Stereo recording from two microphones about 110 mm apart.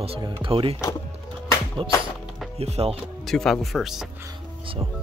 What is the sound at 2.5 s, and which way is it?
Speech, 70° right (ahead or behind).